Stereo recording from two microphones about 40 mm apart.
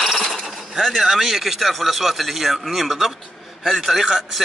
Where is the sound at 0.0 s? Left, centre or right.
Centre.